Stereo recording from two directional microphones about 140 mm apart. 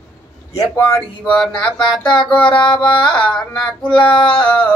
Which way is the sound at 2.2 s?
35° left (ahead or behind).